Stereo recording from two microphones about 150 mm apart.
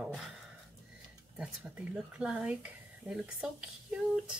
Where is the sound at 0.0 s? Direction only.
Centre (ahead or behind).